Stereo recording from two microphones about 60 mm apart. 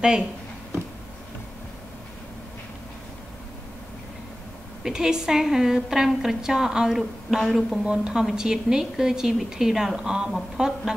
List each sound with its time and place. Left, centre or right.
4.8 s a woman's voice: centre
7.8 s a woman's voice: centre